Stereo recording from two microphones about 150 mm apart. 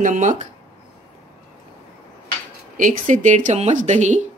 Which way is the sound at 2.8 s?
55° right (ahead or behind).